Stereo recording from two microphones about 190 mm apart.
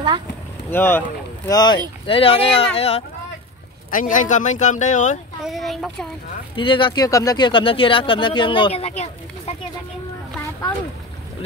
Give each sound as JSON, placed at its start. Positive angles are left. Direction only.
{"t": 0.7, "sound": "speech", "side_deg": 10}
{"t": 3.9, "sound": "speech", "side_deg": 45}
{"t": 5.4, "sound": "speech", "side_deg": 0}
{"t": 6.5, "sound": "speech", "side_deg": 25}